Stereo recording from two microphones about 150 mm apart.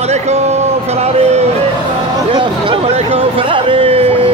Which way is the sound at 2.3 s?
35° right (ahead or behind).